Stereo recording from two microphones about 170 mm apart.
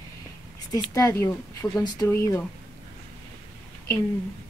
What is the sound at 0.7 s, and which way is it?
Speech, 20° left (ahead or behind).